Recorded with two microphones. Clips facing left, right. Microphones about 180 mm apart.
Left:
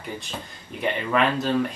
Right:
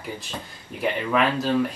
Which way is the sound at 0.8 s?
5° right (ahead or behind).